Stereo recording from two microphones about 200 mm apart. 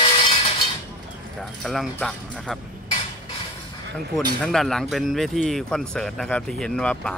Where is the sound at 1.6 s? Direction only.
Centre (ahead or behind).